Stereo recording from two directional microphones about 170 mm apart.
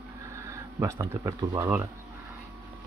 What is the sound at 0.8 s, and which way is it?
Speech, 20° right (ahead or behind).